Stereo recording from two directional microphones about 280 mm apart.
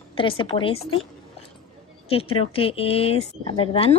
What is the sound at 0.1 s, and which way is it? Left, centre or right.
Speech, centre.